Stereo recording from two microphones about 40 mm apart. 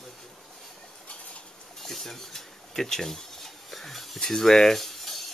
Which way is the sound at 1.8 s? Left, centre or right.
Centre.